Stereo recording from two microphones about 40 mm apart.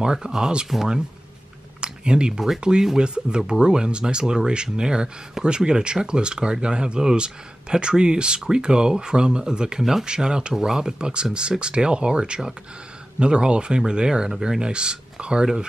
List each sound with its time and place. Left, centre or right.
0.0 s speech: centre
1.8 s a sound: right
2.6 s speech: centre